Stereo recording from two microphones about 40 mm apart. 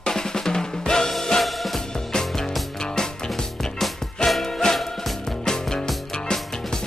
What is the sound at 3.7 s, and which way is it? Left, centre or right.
Music, centre.